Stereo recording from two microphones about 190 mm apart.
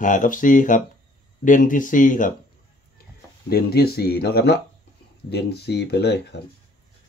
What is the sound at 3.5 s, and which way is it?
Speech, 55° left (ahead or behind).